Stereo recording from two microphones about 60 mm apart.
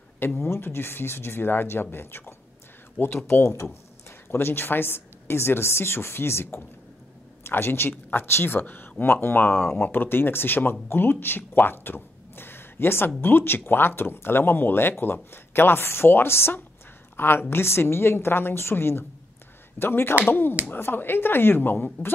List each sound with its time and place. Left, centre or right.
0.4 s a woman's voice: left